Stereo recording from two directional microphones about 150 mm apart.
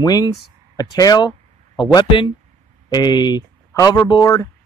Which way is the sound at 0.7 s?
25° left (ahead or behind).